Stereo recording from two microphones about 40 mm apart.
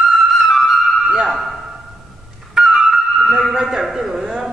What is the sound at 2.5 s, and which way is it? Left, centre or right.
Flute, centre.